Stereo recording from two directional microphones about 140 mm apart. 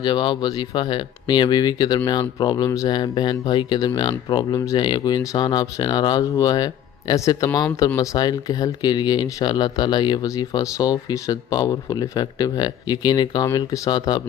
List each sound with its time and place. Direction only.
0.0 s speech: 35° left (ahead or behind)